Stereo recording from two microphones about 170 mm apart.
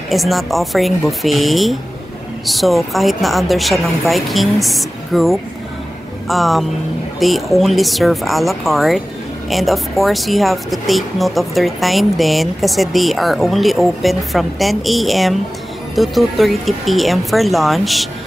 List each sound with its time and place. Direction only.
0.1 s speech: centre (ahead or behind)